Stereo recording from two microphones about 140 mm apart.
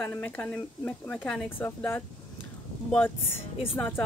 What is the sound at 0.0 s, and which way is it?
Speech, 10° left (ahead or behind).